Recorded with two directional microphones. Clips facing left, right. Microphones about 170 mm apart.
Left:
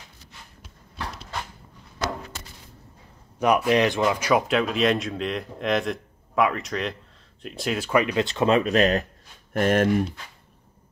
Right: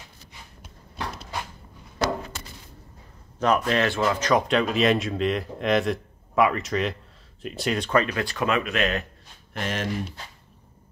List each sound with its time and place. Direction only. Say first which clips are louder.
3.3 s a man's voice: left 2 dB; 10° left (ahead or behind); by 9.0 s 40° left (ahead or behind)
9.5 s speech: left 9 dB; 50° left (ahead or behind)